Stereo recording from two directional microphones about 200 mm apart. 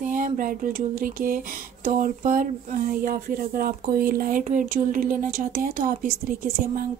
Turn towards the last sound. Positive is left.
turn(degrees=-45)  # may be behind; listen again after turning